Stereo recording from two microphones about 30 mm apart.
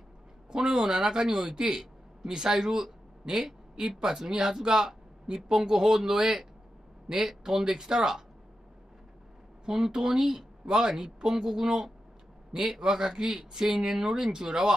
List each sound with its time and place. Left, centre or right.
0.5 s speech: centre
7.6 s speech: right
9.7 s speech: centre